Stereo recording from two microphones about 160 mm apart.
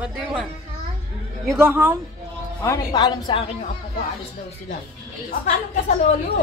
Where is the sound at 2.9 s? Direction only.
30° left (ahead or behind).